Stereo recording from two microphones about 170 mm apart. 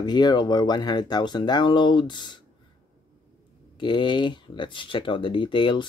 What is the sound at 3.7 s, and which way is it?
Speech, 30° left (ahead or behind).